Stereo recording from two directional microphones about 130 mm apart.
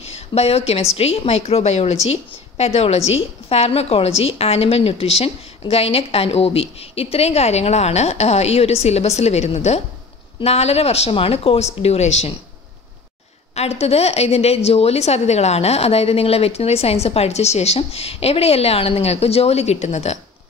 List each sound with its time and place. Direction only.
0.0 s a woman's voice: 50° left (ahead or behind)
13.6 s a woman's voice: 55° left (ahead or behind)